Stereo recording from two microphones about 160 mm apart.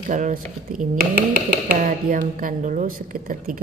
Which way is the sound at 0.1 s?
55° right (ahead or behind).